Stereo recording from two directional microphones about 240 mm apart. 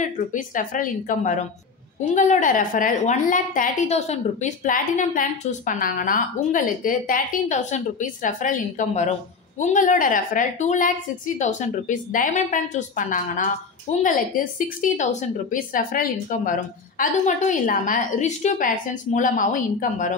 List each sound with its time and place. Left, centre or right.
0.0 s a woman's voice: left